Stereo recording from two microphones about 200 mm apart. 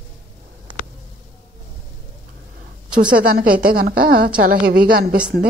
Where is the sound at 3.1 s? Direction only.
45° right (ahead or behind).